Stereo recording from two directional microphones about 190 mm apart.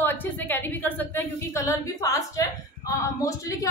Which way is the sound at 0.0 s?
10° left (ahead or behind).